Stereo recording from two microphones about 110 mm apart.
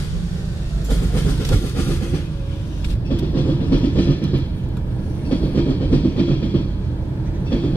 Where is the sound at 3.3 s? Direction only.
15° left (ahead or behind).